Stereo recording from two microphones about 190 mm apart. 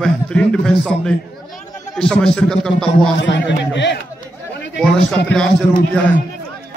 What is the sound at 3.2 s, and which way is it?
Speech, 70° left (ahead or behind).